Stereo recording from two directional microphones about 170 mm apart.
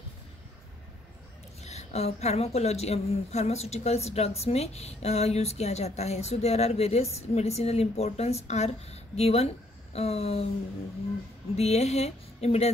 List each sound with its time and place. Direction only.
1.6 s a woman's voice: 40° left (ahead or behind)
11.5 s a woman's voice: 40° left (ahead or behind)